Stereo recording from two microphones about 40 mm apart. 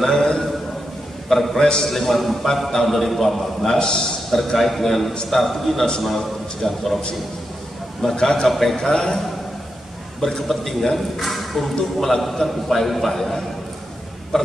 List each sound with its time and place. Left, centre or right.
0.0 s a man's voice: centre
3.7 s a man's voice: left
4.6 s a man's voice: centre
8.2 s a man's voice: centre
8.5 s a man's voice: centre
8.7 s a man's voice: centre
10.2 s a man's voice: centre
14.3 s a sound: centre